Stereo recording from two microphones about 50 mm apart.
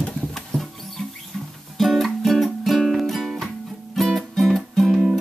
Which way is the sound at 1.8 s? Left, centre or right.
Centre.